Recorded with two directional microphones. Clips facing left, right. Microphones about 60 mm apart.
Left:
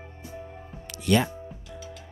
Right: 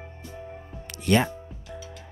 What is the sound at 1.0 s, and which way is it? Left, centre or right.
Speech, right.